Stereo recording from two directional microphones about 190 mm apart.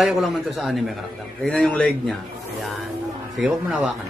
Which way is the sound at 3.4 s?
Centre (ahead or behind).